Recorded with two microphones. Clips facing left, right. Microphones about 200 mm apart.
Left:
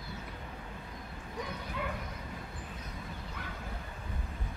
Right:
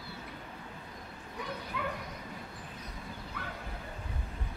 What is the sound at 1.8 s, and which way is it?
Bow-wow, 25° left (ahead or behind).